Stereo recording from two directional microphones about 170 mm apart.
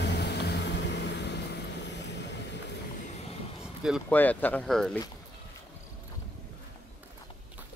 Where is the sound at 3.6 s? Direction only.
5° right (ahead or behind).